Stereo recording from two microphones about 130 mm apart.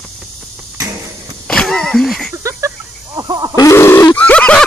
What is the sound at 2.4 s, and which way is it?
Snake, 20° right (ahead or behind).